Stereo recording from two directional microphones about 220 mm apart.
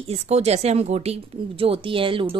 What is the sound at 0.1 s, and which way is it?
A woman's voice, 30° right (ahead or behind).